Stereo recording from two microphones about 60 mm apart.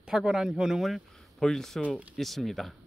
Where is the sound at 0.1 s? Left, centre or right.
Centre.